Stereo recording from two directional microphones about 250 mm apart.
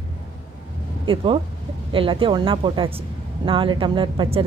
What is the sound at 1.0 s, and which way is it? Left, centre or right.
Speech, right.